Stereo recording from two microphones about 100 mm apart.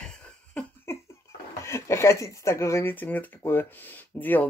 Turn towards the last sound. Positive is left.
turn(degrees=20)  # may be behind; listen again after turning